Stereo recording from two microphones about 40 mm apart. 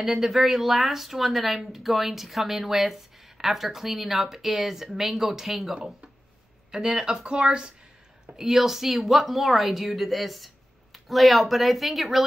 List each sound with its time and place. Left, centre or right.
0.0 s speech: centre
8.4 s speech: centre